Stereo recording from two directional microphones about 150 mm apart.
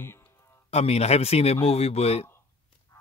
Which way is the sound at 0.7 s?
45° left (ahead or behind).